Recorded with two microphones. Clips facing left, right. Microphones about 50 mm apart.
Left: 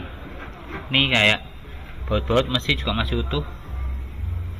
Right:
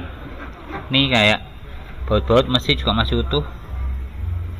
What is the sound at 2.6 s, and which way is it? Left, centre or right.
Speech, left.